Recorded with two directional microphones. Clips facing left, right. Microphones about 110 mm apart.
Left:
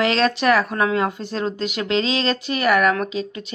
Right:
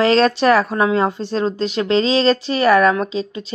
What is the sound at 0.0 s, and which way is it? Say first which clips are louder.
Speech: right 5 dB; 35° right (ahead or behind).